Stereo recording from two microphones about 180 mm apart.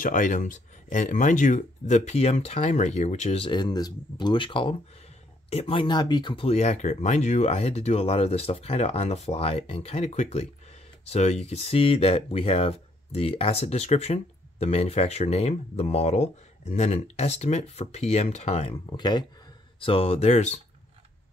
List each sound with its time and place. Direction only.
0.0 s speech: 45° left (ahead or behind)